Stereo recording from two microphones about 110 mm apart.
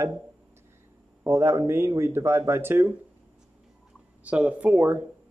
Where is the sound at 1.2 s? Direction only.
25° right (ahead or behind).